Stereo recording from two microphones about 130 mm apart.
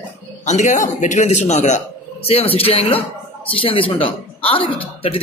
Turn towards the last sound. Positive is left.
turn(degrees=45)  # may be behind; listen again after turning